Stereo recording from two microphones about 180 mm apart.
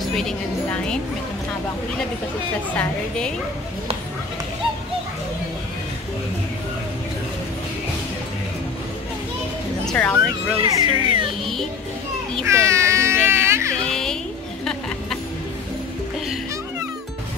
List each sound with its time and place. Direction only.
0.1 s speech: 5° left (ahead or behind)
2.7 s a woman's voice: 5° left (ahead or behind)
9.8 s speech: 5° left (ahead or behind)
10.6 s speech: 25° right (ahead or behind)
12.4 s baby cry: 15° right (ahead or behind)
13.8 s music: 5° left (ahead or behind)